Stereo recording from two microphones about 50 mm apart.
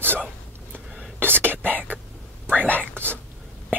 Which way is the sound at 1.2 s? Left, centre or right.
Right.